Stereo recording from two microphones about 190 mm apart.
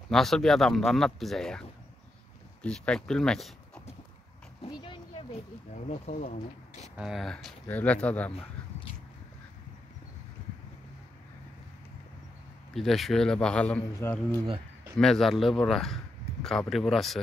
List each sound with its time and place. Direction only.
0.1 s speech: centre (ahead or behind)
4.6 s a sound: 25° left (ahead or behind)
5.9 s speech: 35° left (ahead or behind)
7.0 s speech: centre (ahead or behind)
12.7 s speech: centre (ahead or behind)